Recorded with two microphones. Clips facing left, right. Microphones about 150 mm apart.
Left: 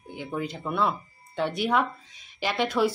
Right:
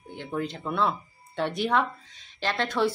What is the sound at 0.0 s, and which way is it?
Speech, 5° left (ahead or behind).